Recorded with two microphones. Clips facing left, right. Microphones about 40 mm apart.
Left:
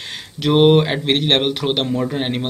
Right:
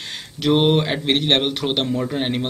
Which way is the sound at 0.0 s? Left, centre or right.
Centre.